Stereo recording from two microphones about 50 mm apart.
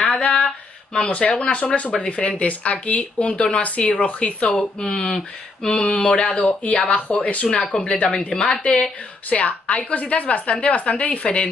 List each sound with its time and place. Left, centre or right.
0.0 s a sound: left
0.9 s speech: left
7.5 s speech: centre